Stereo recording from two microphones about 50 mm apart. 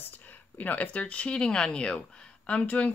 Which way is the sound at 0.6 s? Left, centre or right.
Left.